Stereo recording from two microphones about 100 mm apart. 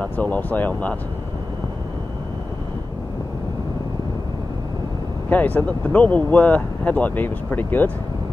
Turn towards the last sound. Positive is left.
turn(degrees=15)  # may be behind; listen again after turning